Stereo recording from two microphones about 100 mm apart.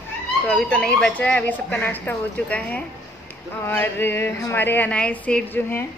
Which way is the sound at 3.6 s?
20° left (ahead or behind).